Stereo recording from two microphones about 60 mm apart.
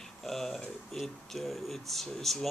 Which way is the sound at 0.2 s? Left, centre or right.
Centre.